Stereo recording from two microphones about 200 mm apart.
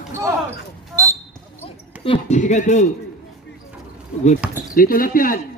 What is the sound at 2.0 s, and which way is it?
Speech, 30° left (ahead or behind).